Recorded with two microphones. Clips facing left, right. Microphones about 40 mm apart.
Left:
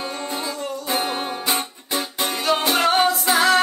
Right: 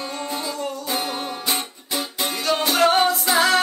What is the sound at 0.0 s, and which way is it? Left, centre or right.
Music, centre.